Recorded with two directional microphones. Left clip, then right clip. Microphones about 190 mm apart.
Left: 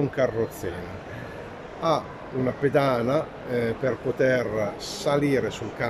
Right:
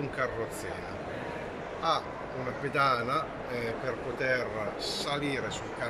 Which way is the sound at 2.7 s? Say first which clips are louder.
Left 4 dB; 40° left (ahead or behind).